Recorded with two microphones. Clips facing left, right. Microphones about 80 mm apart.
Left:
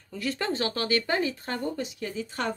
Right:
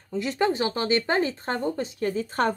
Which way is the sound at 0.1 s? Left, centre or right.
Right.